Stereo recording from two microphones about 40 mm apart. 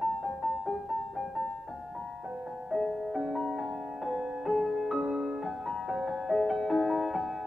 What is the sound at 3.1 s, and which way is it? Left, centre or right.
Music, centre.